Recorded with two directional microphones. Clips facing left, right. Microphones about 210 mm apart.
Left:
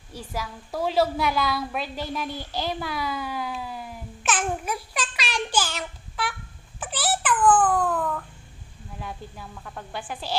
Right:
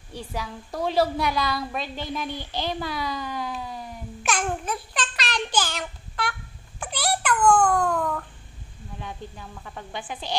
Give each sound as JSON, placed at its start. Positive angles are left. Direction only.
{"t": 0.1, "sound": "a woman's voice", "side_deg": 5}
{"t": 6.8, "sound": "a sound", "side_deg": 5}
{"t": 7.4, "sound": "baby cry", "side_deg": 5}
{"t": 9.0, "sound": "a woman's voice", "side_deg": 0}